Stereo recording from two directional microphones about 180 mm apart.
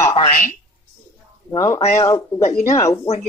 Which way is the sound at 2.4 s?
40° left (ahead or behind).